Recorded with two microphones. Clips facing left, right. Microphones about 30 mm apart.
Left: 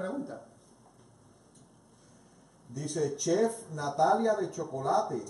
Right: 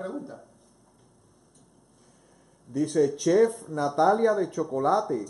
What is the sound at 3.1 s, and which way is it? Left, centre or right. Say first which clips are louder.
Speech: right 7 dB; right.